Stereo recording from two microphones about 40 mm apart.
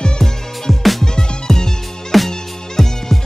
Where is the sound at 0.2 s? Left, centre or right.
Centre.